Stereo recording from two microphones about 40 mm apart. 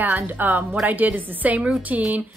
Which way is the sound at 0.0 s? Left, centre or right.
Right.